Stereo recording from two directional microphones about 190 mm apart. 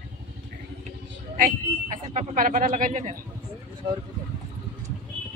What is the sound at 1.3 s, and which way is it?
A man's voice, 45° right (ahead or behind).